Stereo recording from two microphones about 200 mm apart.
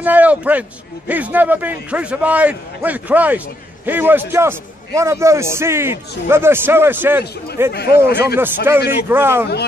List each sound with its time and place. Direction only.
0.0 s a man's voice: 10° right (ahead or behind)
7.7 s speech: 50° left (ahead or behind)
8.4 s a man's voice: 10° right (ahead or behind)